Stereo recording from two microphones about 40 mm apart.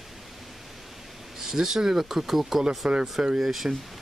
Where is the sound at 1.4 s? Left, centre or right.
Centre.